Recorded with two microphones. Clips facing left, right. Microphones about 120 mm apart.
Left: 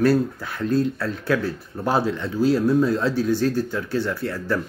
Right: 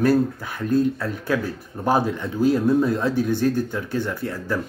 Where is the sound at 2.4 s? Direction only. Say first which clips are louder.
Even; 50° right (ahead or behind).